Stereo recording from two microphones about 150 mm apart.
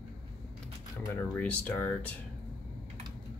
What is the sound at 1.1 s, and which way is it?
Speech, 10° left (ahead or behind).